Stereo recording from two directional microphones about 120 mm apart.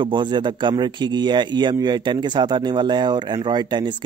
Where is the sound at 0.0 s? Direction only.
40° right (ahead or behind).